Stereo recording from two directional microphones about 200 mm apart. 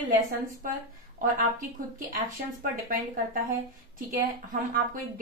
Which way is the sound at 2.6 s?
45° right (ahead or behind).